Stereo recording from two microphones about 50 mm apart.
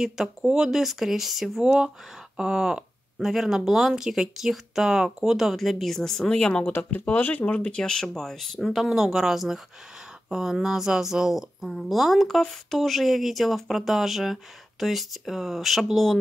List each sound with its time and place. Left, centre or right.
0.0 s speech: centre
6.8 s speech: left; by 8.6 s centre
8.8 s speech: centre